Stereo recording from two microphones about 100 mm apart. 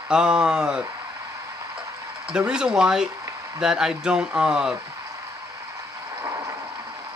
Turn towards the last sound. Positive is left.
turn(degrees=-35)  # may be behind; listen again after turning